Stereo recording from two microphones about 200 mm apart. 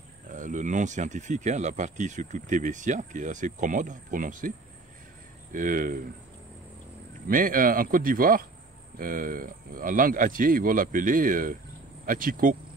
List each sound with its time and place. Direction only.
0.3 s speech: 40° right (ahead or behind)
7.2 s speech: 45° right (ahead or behind)